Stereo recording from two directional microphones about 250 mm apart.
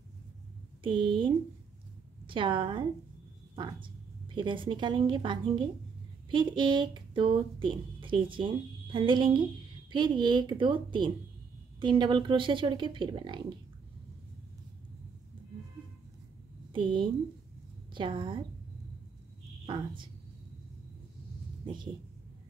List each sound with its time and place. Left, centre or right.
0.8 s a woman's voice: centre
16.7 s a woman's voice: centre
19.6 s speech: centre
21.7 s a woman's voice: centre